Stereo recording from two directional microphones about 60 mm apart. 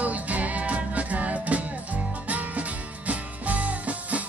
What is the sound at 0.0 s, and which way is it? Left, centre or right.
Music, right.